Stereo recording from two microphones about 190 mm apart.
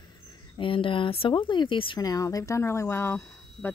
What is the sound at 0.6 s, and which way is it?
Speech, 25° left (ahead or behind).